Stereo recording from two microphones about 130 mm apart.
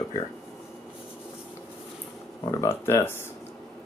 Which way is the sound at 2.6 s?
20° left (ahead or behind).